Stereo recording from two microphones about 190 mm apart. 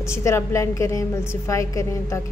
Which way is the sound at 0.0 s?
15° left (ahead or behind).